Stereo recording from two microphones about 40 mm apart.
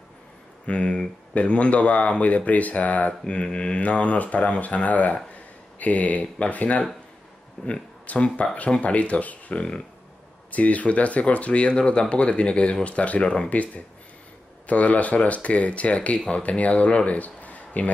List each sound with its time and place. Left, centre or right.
0.7 s speech: left